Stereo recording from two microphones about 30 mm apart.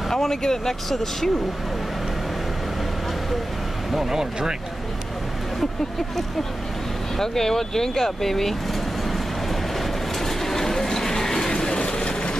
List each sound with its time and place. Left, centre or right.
0.1 s speech: centre
4.1 s speech: right
7.2 s speech: centre
9.8 s train: centre
11.8 s vehicle: left